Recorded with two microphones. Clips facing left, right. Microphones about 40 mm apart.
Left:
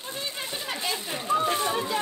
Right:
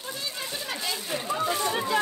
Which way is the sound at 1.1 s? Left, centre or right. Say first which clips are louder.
Left 3 dB; left.